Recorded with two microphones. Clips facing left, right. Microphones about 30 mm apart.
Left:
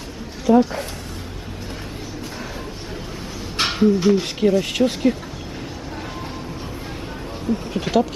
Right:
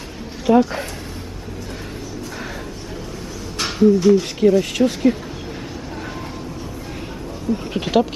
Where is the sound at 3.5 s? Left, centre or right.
Left.